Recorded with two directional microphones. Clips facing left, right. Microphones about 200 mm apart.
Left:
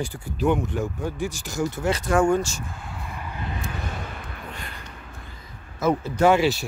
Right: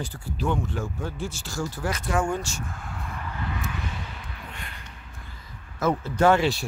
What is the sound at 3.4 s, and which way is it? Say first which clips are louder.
Vehicle: even; 30° left (ahead or behind).